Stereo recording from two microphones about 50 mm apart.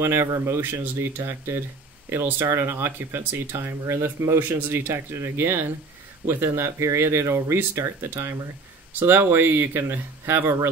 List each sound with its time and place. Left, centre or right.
0.0 s speech: right
3.5 s speech: right
4.4 s speech: right
6.2 s speech: right
8.0 s speech: right